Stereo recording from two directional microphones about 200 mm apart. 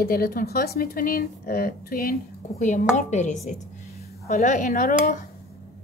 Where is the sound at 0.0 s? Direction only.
45° left (ahead or behind).